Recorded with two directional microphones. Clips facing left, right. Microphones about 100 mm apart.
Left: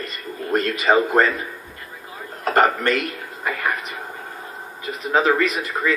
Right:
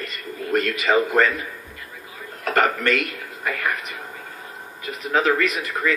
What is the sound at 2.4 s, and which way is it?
Speech, 30° left (ahead or behind).